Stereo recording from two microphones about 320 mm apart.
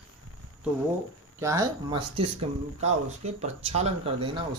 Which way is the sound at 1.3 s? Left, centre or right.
Centre.